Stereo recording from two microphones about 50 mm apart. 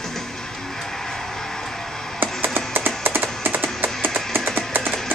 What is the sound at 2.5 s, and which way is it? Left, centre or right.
Music, right.